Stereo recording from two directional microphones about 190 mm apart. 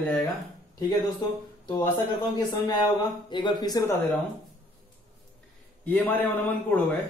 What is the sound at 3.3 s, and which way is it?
Speech, 25° left (ahead or behind).